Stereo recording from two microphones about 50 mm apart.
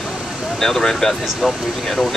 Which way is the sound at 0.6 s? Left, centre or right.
Centre.